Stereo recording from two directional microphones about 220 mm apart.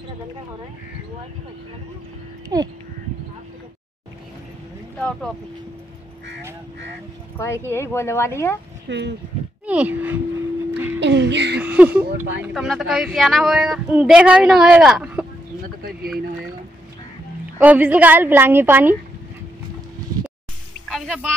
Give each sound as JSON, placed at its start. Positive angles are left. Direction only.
{"t": 2.5, "sound": "a woman's voice", "side_deg": -15}
{"t": 7.3, "sound": "speech", "side_deg": 10}
{"t": 8.8, "sound": "speech", "side_deg": -50}
{"t": 9.7, "sound": "a woman's voice", "side_deg": -5}
{"t": 11.0, "sound": "a woman's voice", "side_deg": -55}
{"t": 11.6, "sound": "speech", "side_deg": -5}
{"t": 17.6, "sound": "a woman's voice", "side_deg": -10}
{"t": 20.9, "sound": "speech", "side_deg": 0}